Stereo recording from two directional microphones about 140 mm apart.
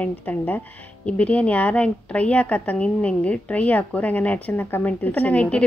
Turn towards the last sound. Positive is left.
turn(degrees=10)  # may be behind; listen again after turning